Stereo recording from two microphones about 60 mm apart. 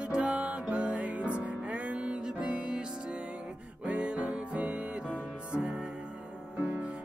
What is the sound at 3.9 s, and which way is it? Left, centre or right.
Music, centre.